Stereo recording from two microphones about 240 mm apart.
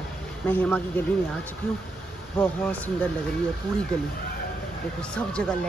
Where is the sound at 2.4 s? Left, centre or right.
Centre.